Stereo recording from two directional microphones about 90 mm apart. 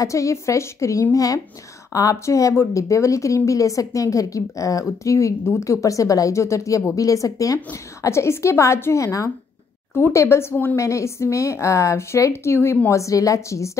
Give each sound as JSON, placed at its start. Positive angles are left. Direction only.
{"t": 0.0, "sound": "speech", "side_deg": 35}
{"t": 10.5, "sound": "a woman's voice", "side_deg": 20}
{"t": 10.8, "sound": "speech", "side_deg": 35}